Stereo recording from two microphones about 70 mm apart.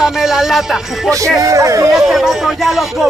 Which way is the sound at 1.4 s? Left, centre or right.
Right.